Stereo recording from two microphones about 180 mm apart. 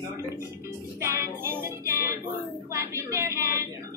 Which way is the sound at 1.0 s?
15° right (ahead or behind).